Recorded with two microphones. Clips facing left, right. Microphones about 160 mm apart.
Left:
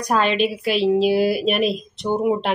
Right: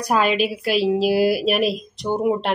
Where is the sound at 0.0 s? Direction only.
5° right (ahead or behind).